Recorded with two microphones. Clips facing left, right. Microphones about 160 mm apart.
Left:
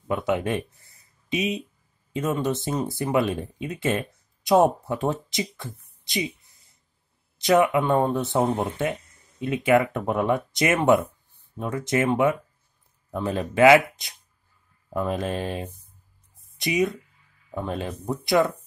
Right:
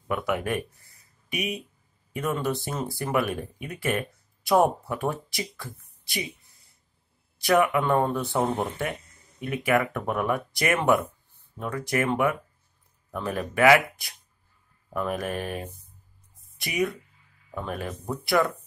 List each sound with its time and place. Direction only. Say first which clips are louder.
0.1 s speech: left 3 dB; 25° left (ahead or behind)
7.3 s speech: left 2 dB; 20° left (ahead or behind)